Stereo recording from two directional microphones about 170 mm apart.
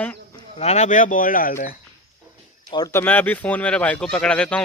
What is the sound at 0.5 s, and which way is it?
Speech, 40° left (ahead or behind).